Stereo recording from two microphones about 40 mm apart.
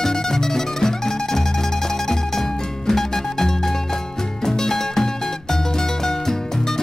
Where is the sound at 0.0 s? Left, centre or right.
Centre.